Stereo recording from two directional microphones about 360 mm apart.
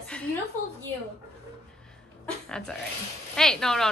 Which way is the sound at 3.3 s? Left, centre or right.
Centre.